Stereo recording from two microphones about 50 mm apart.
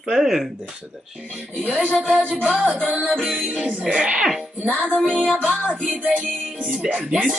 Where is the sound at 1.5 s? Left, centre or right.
Centre.